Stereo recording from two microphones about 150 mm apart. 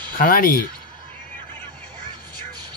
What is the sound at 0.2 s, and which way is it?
Speech, 75° left (ahead or behind).